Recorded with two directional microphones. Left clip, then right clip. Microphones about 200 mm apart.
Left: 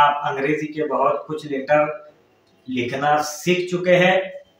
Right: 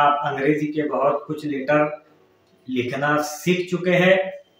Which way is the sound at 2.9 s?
15° right (ahead or behind).